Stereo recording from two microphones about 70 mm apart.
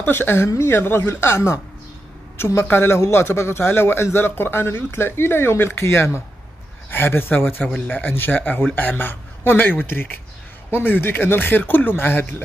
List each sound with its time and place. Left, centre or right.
0.0 s a man's voice: left